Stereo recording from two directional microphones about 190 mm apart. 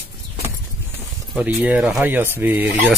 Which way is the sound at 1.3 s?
5° right (ahead or behind).